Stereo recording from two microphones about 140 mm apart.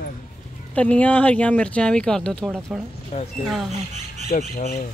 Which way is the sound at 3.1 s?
60° left (ahead or behind).